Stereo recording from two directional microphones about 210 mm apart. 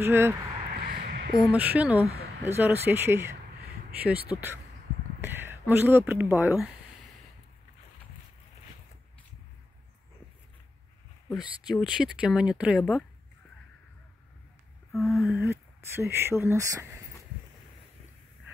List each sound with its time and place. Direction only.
0.0 s speech: 10° right (ahead or behind)
0.8 s a sound: 50° right (ahead or behind)
1.5 s speech: 5° right (ahead or behind)
11.3 s speech: 5° right (ahead or behind)
14.9 s speech: centre (ahead or behind)
15.8 s speech: 10° right (ahead or behind)